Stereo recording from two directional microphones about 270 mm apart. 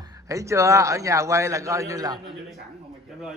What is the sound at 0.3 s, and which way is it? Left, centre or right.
A man's voice, centre.